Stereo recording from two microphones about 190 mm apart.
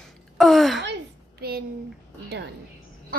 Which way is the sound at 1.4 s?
55° right (ahead or behind).